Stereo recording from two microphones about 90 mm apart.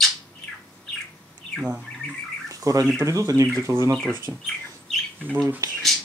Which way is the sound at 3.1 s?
40° right (ahead or behind).